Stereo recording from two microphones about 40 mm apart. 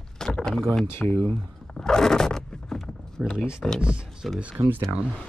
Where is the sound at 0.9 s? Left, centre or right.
Left.